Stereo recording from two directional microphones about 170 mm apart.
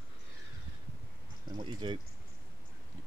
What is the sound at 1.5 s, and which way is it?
Speech, 30° right (ahead or behind).